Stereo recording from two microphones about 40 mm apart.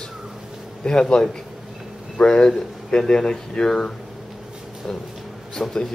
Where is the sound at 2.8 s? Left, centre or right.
Centre.